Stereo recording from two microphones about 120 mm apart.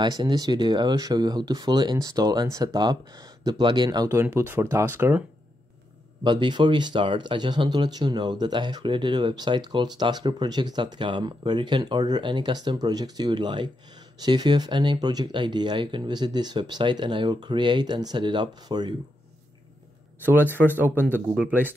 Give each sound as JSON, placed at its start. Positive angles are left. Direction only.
{"t": 0.0, "sound": "speech", "side_deg": -35}
{"t": 6.2, "sound": "speech", "side_deg": -40}
{"t": 20.2, "sound": "speech", "side_deg": -15}
{"t": 20.4, "sound": "speech", "side_deg": 15}
{"t": 21.1, "sound": "speech", "side_deg": -15}